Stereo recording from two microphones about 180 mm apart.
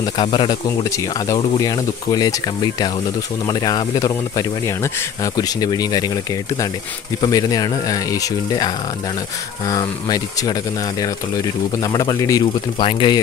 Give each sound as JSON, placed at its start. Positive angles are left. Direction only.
{"t": 0.0, "sound": "speech", "side_deg": 25}